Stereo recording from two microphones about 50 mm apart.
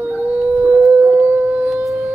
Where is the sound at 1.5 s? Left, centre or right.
Right.